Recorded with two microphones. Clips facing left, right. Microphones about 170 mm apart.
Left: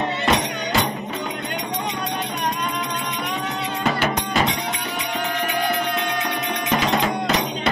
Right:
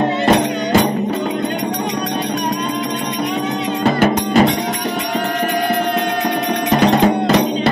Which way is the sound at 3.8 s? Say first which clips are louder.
Right 8 dB; 40° right (ahead or behind).